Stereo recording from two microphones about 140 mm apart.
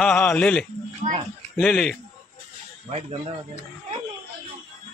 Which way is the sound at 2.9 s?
50° right (ahead or behind).